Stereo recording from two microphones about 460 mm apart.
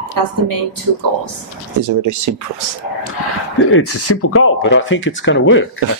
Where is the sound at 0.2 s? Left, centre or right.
Right.